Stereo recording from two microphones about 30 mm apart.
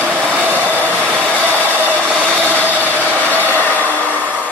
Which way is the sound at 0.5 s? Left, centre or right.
Right.